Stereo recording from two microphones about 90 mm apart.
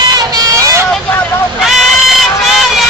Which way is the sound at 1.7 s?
Centre (ahead or behind).